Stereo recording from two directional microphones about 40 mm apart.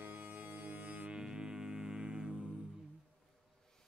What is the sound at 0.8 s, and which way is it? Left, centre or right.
Music, right.